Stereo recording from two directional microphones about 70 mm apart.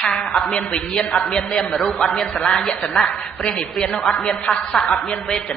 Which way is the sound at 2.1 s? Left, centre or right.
Centre.